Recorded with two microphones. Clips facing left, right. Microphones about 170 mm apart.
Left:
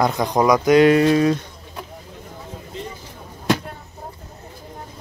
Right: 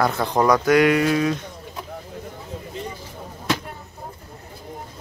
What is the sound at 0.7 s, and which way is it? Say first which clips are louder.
Speech: left 4 dB; 30° left (ahead or behind).